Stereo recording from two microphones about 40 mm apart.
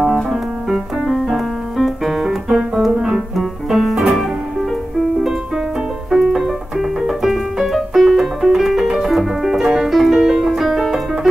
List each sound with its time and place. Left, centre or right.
0.0 s music: centre
6.0 s music: centre
6.3 s piano: centre
9.1 s music: centre